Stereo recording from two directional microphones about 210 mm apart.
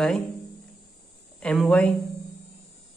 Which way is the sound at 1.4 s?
5° left (ahead or behind).